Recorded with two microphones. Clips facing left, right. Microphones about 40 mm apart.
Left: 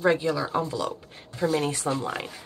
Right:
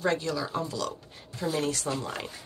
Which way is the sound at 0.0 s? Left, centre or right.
Centre.